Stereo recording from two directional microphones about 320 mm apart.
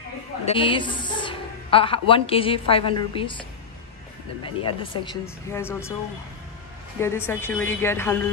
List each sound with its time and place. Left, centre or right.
0.5 s a woman's voice: centre
4.4 s speech: centre
7.2 s speech: centre